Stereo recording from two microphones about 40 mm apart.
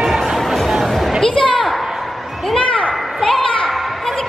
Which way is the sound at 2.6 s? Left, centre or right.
Left.